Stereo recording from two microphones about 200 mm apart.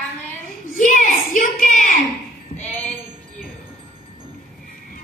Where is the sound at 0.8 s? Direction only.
40° left (ahead or behind).